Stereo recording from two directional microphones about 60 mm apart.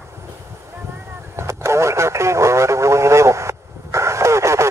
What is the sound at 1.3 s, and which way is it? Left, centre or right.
Radio, right.